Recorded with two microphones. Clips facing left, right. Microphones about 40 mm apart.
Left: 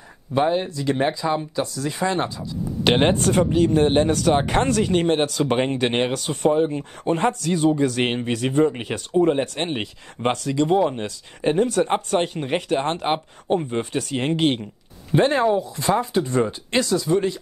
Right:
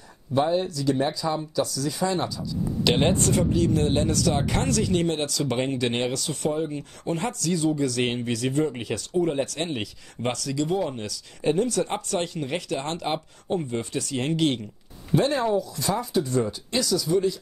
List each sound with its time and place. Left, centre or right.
0.3 s speech: left